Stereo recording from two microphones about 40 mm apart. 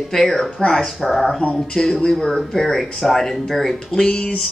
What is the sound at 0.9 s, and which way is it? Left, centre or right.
Speech, centre.